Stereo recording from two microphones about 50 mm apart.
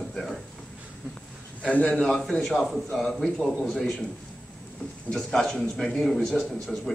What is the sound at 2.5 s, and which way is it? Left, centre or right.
A man's voice, centre.